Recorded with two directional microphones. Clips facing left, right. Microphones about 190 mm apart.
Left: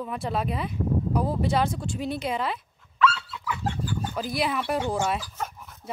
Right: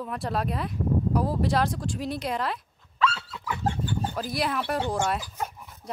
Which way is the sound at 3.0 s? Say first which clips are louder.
Left 3 dB; 40° right (ahead or behind).